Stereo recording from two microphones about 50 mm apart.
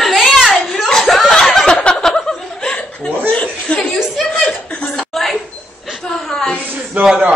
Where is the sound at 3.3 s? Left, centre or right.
Left.